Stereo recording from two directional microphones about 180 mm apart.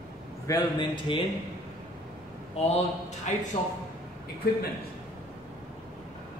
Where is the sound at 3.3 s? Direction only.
40° left (ahead or behind).